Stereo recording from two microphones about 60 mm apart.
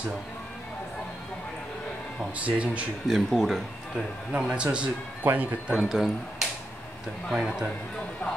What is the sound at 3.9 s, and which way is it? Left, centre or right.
A man's voice, centre.